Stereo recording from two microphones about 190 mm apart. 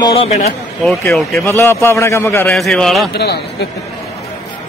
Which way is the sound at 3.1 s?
60° left (ahead or behind).